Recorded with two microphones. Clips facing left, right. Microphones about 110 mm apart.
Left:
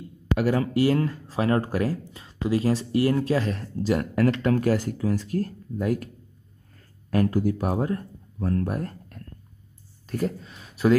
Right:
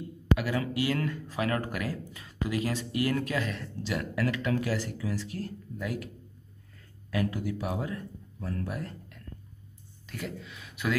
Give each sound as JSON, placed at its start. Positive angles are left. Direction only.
{"t": 0.4, "sound": "speech", "side_deg": 40}
{"t": 7.1, "sound": "speech", "side_deg": 45}